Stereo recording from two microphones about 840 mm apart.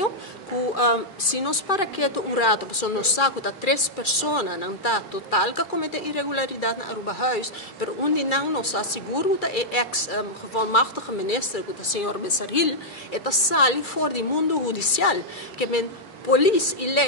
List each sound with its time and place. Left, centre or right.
0.7 s a woman's voice: left